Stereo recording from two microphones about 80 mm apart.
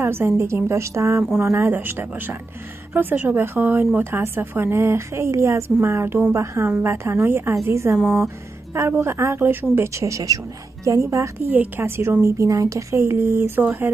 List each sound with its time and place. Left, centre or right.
0.0 s speech: right
11.4 s speech: right